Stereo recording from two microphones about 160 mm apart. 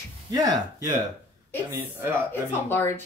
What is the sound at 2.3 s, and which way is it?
Speech, 15° left (ahead or behind).